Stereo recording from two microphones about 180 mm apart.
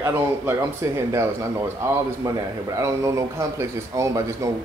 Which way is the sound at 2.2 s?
15° right (ahead or behind).